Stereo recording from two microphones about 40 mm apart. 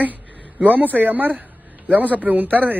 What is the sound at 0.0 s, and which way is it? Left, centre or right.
A man's voice, right.